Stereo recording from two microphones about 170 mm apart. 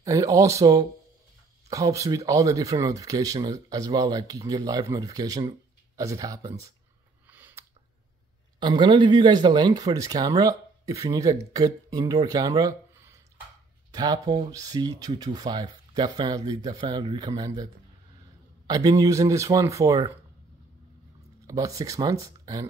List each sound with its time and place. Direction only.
0.0 s speech: 20° right (ahead or behind)
7.2 s a sound: 10° right (ahead or behind)
8.5 s speech: 25° right (ahead or behind)
13.9 s speech: 20° right (ahead or behind)
18.7 s speech: 20° right (ahead or behind)
21.5 s speech: 20° right (ahead or behind)